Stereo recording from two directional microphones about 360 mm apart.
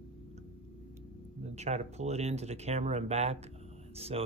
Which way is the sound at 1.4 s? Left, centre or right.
Centre.